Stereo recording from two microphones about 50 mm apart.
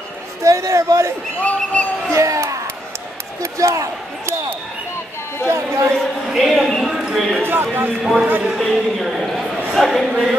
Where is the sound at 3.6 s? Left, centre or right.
Right.